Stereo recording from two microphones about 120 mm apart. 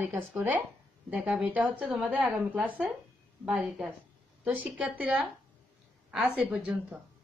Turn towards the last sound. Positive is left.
turn(degrees=-5)  # may be behind; listen again after turning